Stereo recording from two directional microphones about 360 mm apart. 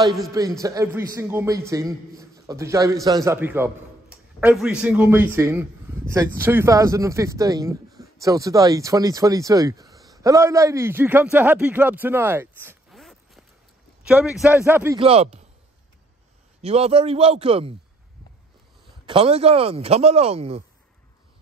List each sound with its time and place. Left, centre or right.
0.1 s a man's voice: centre
16.6 s a man's voice: centre
19.0 s a man's voice: centre